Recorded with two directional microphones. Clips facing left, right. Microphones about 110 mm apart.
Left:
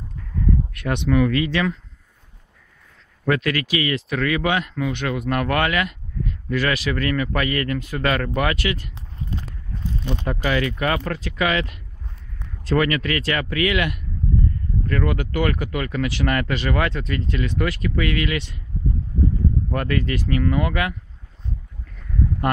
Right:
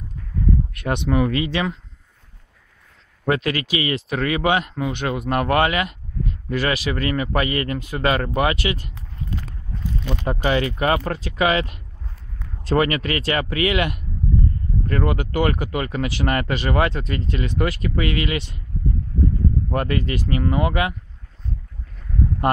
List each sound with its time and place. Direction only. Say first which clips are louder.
1.0 s speech: left 2 dB; 25° right (ahead or behind)
3.3 s speech: even; 25° right (ahead or behind)
8.9 s clip-clop: even; 25° left (ahead or behind)
10.2 s speech: right 2 dB; 25° right (ahead or behind)
19.7 s speech: right 1 dB; 20° right (ahead or behind)